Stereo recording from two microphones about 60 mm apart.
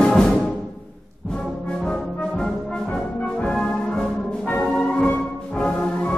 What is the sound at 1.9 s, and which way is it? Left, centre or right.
Brass instrument, centre.